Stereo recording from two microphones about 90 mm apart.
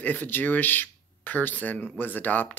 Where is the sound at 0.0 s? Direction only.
20° left (ahead or behind).